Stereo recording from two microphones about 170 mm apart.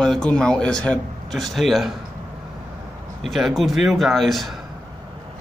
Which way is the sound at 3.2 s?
Centre (ahead or behind).